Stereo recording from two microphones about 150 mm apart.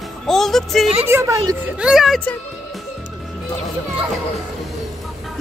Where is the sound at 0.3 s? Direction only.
Centre (ahead or behind).